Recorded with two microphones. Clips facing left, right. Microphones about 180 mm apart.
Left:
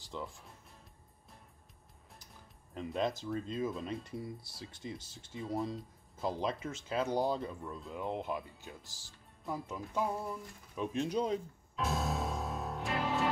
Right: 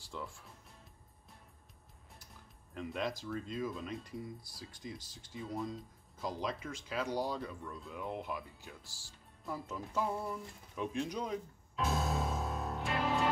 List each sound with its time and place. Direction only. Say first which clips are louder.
0.1 s speech: left 2 dB; 20° left (ahead or behind)
2.7 s speech: left 3 dB; 25° left (ahead or behind)
11.0 s speech: left 6 dB; 25° left (ahead or behind)
11.7 s music: even; centre (ahead or behind)